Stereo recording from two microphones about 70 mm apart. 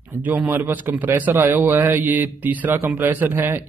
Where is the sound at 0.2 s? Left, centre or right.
Right.